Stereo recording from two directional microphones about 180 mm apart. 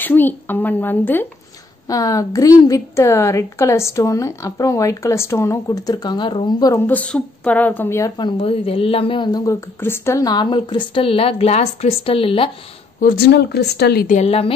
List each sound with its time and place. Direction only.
0.0 s a woman's voice: 10° left (ahead or behind)
6.9 s a woman's voice: 10° left (ahead or behind); by 12.4 s 30° left (ahead or behind)
13.0 s speech: 60° left (ahead or behind)
14.0 s speech: 40° left (ahead or behind)